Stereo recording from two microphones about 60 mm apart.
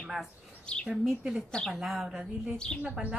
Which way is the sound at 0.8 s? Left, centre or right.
Centre.